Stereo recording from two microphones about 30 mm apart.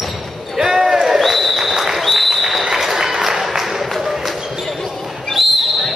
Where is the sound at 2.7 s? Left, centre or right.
Centre.